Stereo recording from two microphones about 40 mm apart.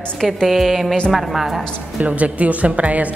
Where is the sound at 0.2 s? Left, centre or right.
Centre.